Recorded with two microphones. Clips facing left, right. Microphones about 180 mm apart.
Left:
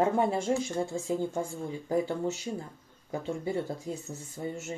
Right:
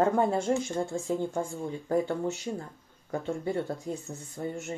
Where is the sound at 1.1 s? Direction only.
20° right (ahead or behind).